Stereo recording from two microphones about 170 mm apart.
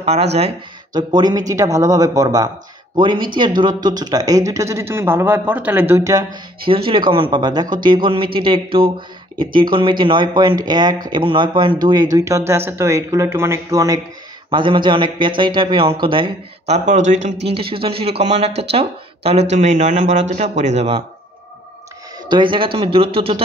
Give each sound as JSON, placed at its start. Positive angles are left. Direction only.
{"t": 0.0, "sound": "speech", "side_deg": -40}
{"t": 0.9, "sound": "speech", "side_deg": -25}
{"t": 6.6, "sound": "speech", "side_deg": -30}
{"t": 14.5, "sound": "speech", "side_deg": -30}
{"t": 17.6, "sound": "speech", "side_deg": -30}
{"t": 22.3, "sound": "speech", "side_deg": -30}